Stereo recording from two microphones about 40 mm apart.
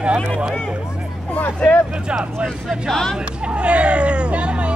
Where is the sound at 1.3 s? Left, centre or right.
Left.